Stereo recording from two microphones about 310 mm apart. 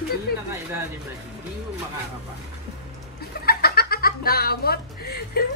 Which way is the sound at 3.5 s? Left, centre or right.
Left.